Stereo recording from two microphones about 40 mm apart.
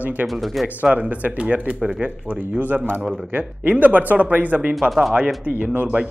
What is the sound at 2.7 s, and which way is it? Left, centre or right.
Speech, right.